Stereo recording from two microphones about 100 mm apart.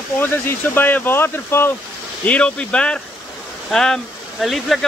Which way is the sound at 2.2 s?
15° left (ahead or behind).